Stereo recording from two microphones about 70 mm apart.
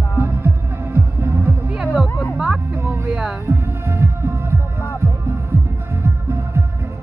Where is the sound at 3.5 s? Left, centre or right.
Right.